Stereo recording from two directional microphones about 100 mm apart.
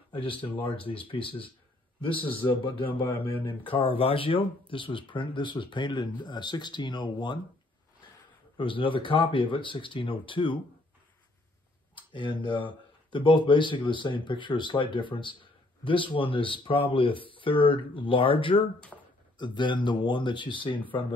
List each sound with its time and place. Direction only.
0.2 s speech: 60° left (ahead or behind)
3.1 s speech: 20° left (ahead or behind)
3.6 s speech: 60° left (ahead or behind)
8.5 s speech: 60° left (ahead or behind)
12.1 s speech: 55° left (ahead or behind)
18.9 s a sound: 5° left (ahead or behind)
19.3 s speech: 50° left (ahead or behind)